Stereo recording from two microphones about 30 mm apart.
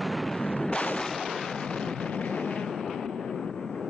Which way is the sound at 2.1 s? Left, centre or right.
Left.